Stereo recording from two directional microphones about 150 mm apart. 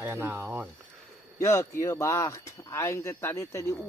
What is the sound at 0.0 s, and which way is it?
Speech, 15° right (ahead or behind).